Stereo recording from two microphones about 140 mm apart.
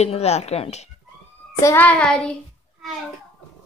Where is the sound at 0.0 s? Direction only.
50° left (ahead or behind).